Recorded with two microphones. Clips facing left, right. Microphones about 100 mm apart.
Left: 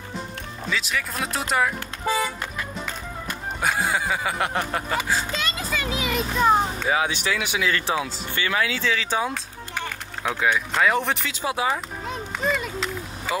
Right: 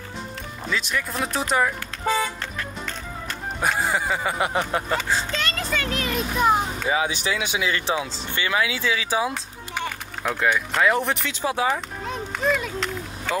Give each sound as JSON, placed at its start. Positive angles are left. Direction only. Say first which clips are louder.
{"t": 0.7, "sound": "speech", "louder": "right 1 dB", "side_deg": 0}
{"t": 3.6, "sound": "speech", "louder": "right 1 dB", "side_deg": 0}
{"t": 4.9, "sound": "a sound", "louder": "left 2 dB", "side_deg": 5}
{"t": 6.1, "sound": "speech", "louder": "left 1 dB", "side_deg": -5}
{"t": 7.2, "sound": "speech", "louder": "even", "side_deg": -20}